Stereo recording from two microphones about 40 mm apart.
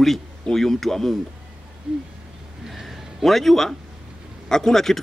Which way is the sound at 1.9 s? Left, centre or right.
Right.